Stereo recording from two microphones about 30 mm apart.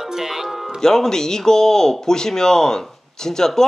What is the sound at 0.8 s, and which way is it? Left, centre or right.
A man's voice, centre.